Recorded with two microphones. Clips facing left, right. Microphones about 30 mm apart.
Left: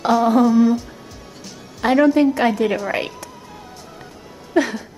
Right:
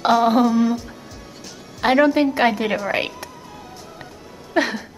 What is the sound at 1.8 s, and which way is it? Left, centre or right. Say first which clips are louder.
Speech: left 1 dB; centre.